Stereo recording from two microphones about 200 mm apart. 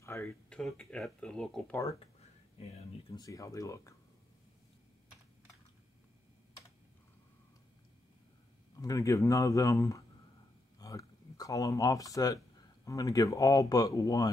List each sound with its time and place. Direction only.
0.0 s a sound: 15° left (ahead or behind)
0.6 s speech: 5° left (ahead or behind)
3.1 s speech: 15° left (ahead or behind)
8.7 s speech: 15° left (ahead or behind)